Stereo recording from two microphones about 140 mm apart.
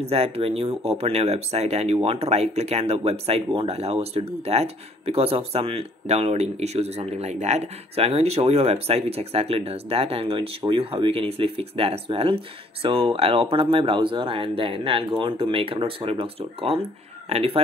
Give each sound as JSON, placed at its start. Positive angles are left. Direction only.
{"t": 0.0, "sound": "speech", "side_deg": -45}